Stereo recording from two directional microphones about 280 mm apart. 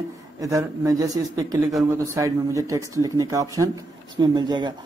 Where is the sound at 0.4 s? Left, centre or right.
Centre.